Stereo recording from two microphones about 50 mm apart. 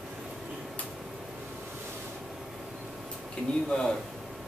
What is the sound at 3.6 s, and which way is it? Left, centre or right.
Speech, centre.